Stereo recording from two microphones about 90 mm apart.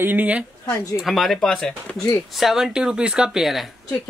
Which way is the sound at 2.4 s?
5° right (ahead or behind).